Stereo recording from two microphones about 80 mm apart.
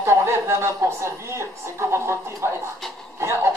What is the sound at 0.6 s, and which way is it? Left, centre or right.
A woman's voice, right.